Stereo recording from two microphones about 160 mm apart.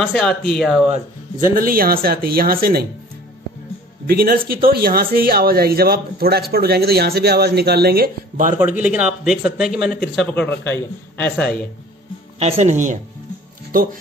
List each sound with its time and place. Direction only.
0.0 s speech: 5° left (ahead or behind)
1.6 s speech: 65° right (ahead or behind)
4.1 s speech: 70° right (ahead or behind)
8.7 s a man's voice: 10° right (ahead or behind); by 11.5 s 10° left (ahead or behind)
12.4 s speech: 40° right (ahead or behind)